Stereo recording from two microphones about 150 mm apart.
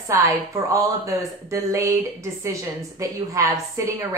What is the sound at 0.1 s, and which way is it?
Speech, 20° right (ahead or behind).